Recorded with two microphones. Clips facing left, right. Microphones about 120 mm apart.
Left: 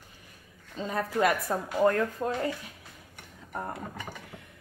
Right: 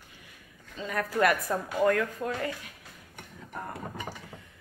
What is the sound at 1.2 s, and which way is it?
A woman's voice, 20° left (ahead or behind).